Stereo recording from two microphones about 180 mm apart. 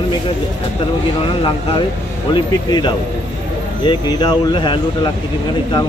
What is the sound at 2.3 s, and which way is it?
Speech, 25° left (ahead or behind).